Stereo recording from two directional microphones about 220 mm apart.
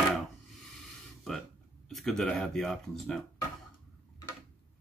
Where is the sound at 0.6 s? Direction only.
Centre (ahead or behind).